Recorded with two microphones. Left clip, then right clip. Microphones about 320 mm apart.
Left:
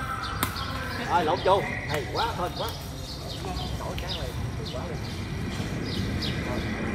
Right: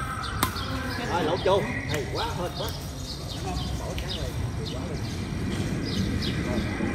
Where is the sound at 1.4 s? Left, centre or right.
Centre.